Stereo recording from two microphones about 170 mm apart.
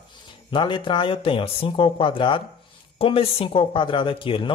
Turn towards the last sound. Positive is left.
turn(degrees=30)  # may be behind; listen again after turning